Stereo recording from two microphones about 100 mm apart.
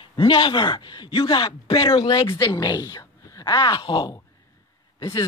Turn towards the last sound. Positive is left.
turn(degrees=50)  # may be behind; listen again after turning